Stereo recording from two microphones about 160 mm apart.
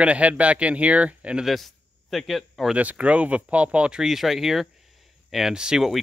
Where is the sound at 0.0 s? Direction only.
10° right (ahead or behind).